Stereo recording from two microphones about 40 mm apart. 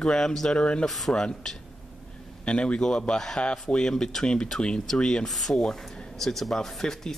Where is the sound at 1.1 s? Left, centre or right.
Centre.